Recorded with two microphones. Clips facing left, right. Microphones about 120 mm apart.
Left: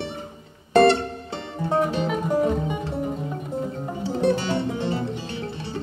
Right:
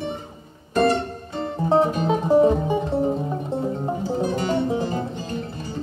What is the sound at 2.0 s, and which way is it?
Music, 30° right (ahead or behind).